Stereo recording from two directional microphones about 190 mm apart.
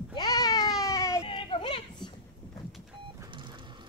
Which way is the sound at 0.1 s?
20° left (ahead or behind).